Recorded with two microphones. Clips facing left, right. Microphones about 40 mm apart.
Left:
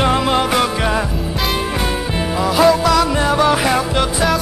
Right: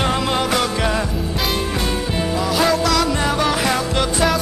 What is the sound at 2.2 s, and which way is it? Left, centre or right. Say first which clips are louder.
Music: left 5 dB; centre.